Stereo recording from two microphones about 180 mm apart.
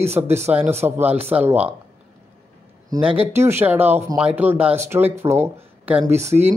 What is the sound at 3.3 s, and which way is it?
Speech, 15° right (ahead or behind).